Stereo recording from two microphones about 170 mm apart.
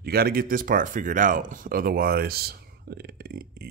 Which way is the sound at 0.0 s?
65° right (ahead or behind).